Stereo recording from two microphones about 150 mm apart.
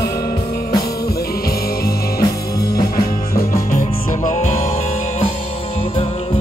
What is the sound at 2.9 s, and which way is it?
Music, 85° left.